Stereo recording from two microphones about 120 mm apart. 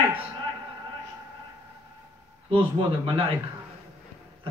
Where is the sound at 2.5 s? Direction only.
45° right (ahead or behind).